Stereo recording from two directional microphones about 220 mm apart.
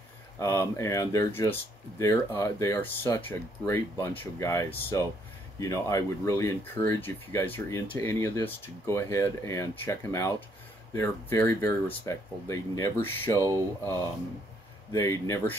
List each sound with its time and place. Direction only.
0.4 s speech: 15° left (ahead or behind)
13.4 s speech: 15° right (ahead or behind)
14.9 s speech: 10° left (ahead or behind)